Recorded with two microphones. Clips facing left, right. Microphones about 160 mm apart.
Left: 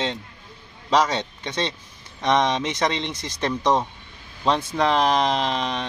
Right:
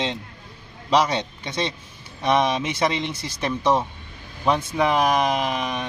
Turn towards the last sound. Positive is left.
turn(degrees=-10)  # may be behind; listen again after turning